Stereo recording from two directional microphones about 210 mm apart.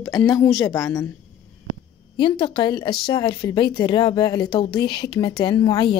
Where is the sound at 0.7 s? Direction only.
15° left (ahead or behind).